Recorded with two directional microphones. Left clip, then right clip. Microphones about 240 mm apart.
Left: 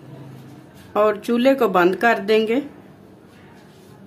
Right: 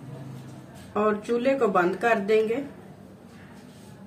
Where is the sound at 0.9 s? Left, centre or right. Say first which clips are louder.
Left 6 dB; left.